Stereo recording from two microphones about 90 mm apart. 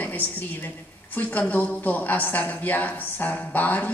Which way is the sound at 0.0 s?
20° left (ahead or behind).